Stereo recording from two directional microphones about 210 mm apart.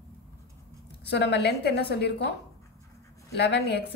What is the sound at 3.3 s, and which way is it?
Speech, 55° left (ahead or behind).